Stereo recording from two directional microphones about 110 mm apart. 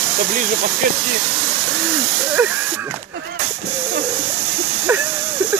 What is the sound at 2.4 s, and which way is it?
Speech, 20° right (ahead or behind).